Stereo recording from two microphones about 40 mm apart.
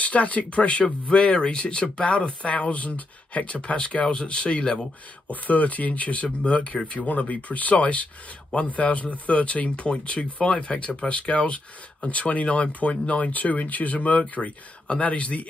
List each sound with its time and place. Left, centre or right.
0.0 s speech: left
5.3 s speech: left